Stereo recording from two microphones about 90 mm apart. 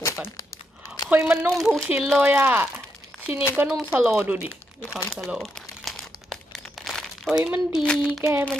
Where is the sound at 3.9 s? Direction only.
15° right (ahead or behind).